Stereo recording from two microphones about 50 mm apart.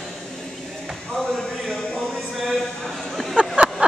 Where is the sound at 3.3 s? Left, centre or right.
Right.